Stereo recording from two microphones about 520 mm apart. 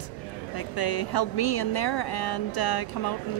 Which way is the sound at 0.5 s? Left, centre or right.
Left.